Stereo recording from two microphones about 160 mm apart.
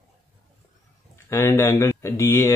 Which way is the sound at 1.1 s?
15° left (ahead or behind).